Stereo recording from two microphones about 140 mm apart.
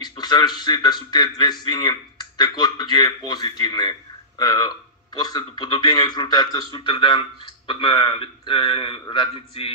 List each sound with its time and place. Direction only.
0.0 s a man's voice: 30° left (ahead or behind)